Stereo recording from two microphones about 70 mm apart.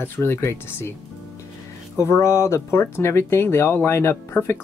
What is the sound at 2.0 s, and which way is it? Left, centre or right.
Speech, left.